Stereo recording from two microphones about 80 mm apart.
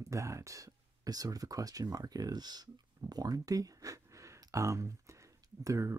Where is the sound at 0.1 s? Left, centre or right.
Right.